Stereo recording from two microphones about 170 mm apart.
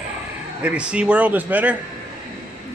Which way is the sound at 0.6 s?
5° right (ahead or behind).